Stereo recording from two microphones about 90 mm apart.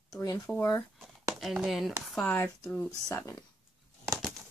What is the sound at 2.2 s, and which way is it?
Speech, 25° left (ahead or behind).